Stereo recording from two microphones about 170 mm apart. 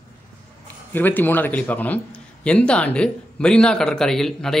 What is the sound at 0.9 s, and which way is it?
A man's voice, 10° left (ahead or behind).